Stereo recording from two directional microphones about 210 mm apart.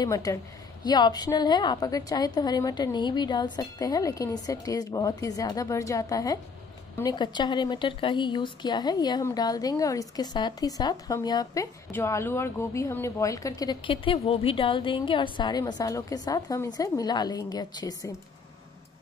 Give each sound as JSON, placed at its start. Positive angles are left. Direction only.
{"t": 0.0, "sound": "a woman's voice", "side_deg": 15}